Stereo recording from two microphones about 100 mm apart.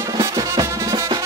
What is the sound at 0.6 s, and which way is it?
Music, 35° right (ahead or behind).